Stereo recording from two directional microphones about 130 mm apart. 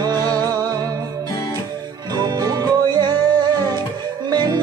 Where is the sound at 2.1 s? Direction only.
35° right (ahead or behind).